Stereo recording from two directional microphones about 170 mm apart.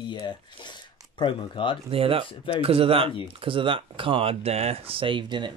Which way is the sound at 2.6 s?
35° right (ahead or behind).